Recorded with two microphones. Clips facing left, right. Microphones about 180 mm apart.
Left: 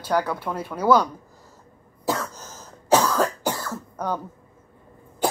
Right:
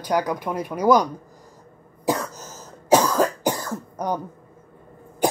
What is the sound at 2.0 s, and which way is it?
Cough, 15° right (ahead or behind).